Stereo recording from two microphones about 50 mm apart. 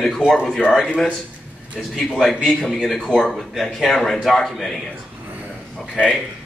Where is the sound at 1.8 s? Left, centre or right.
Centre.